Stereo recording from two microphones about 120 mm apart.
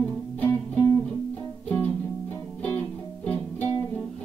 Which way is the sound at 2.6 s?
10° left (ahead or behind).